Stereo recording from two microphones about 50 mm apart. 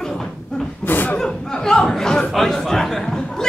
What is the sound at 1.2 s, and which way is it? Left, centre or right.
Chatter, centre.